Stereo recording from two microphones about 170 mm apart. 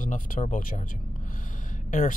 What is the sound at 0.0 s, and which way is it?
Speech, 50° left (ahead or behind).